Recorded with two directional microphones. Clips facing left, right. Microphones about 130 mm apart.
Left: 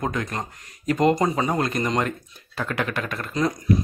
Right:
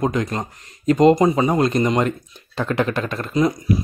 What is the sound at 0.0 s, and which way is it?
Speech, 20° right (ahead or behind).